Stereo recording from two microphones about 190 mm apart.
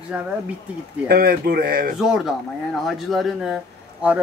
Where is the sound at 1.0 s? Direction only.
55° right (ahead or behind).